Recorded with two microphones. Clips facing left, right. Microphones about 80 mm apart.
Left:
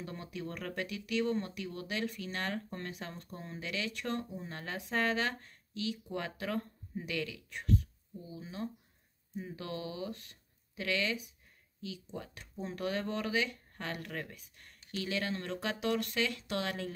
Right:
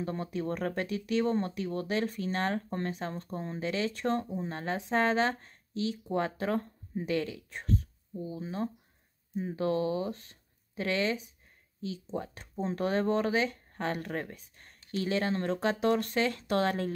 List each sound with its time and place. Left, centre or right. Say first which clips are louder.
0.0 s speech: right 8 dB; right